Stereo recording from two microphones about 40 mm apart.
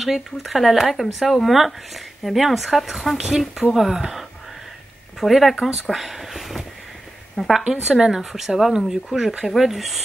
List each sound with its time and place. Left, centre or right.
0.0 s speech: centre
7.6 s speech: centre